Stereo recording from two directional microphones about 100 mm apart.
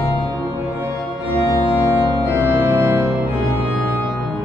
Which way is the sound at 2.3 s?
25° right (ahead or behind).